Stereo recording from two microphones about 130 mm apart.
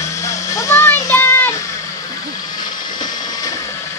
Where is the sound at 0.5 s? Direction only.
25° left (ahead or behind).